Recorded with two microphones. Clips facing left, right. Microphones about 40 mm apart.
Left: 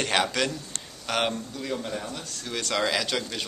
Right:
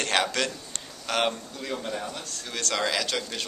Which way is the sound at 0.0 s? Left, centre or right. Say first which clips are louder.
Left 1 dB; centre.